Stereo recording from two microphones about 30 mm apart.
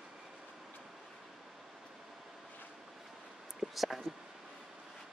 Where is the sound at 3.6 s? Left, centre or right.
Centre.